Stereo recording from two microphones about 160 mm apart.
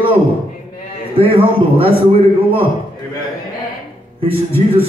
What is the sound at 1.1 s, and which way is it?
Speech, 35° right (ahead or behind).